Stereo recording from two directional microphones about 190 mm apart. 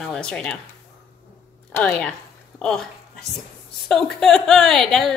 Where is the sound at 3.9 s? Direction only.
Centre (ahead or behind).